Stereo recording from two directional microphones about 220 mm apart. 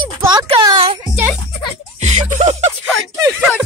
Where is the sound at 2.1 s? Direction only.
30° right (ahead or behind).